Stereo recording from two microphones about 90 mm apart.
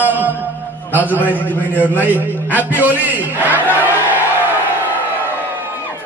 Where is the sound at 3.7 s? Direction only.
20° right (ahead or behind).